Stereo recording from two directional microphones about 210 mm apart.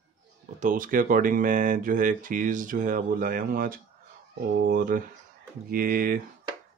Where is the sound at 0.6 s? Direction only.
40° right (ahead or behind).